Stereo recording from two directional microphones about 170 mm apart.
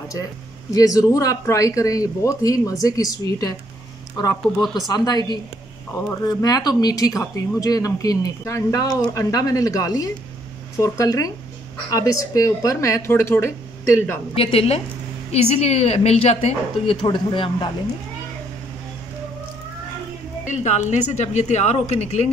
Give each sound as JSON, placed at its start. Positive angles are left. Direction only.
{"t": 0.7, "sound": "a woman's voice", "side_deg": 20}
{"t": 14.3, "sound": "a woman's voice", "side_deg": 35}
{"t": 20.4, "sound": "a woman's voice", "side_deg": 45}